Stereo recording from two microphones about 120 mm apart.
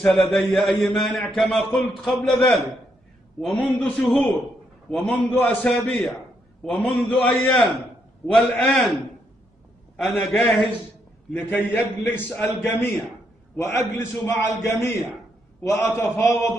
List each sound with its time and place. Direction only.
0.0 s a man's voice: 5° left (ahead or behind)
7.1 s a man's voice: 15° left (ahead or behind)
7.5 s a man's voice: centre (ahead or behind)
9.9 s a man's voice: centre (ahead or behind)
11.3 s a man's voice: 15° left (ahead or behind)